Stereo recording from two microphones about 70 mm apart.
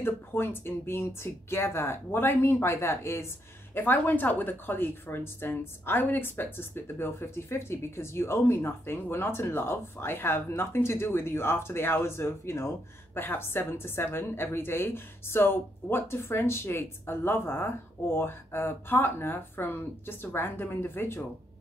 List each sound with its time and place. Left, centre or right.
0.0 s a woman's voice: left
3.7 s a woman's voice: left